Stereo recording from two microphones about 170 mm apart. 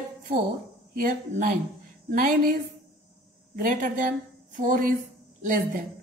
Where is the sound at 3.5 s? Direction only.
55° right (ahead or behind).